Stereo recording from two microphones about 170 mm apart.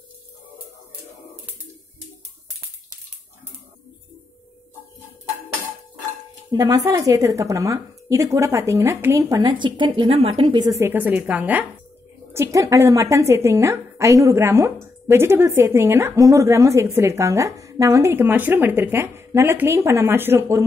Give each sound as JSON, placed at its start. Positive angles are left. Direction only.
{"t": 6.5, "sound": "speech", "side_deg": -20}
{"t": 10.8, "sound": "a woman's voice", "side_deg": -10}